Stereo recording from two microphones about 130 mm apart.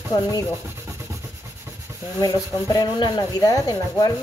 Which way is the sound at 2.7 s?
30° left (ahead or behind).